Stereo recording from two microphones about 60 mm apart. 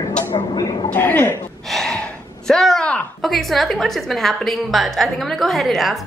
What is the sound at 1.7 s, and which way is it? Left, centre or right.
Gasp, centre.